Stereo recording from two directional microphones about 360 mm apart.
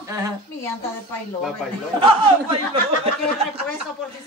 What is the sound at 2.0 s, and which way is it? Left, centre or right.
Speech, centre.